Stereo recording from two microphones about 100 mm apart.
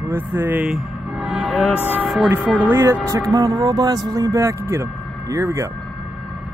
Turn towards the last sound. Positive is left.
turn(degrees=-30)  # may be behind; listen again after turning